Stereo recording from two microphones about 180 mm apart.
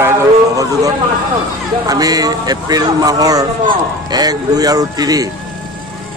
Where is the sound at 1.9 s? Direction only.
20° right (ahead or behind).